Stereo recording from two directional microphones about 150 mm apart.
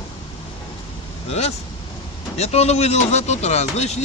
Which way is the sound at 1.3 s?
45° left (ahead or behind).